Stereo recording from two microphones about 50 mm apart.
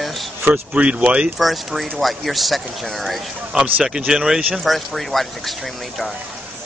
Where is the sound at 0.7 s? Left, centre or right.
Right.